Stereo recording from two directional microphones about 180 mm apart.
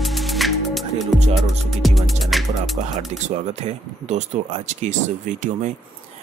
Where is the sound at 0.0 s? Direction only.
Centre (ahead or behind).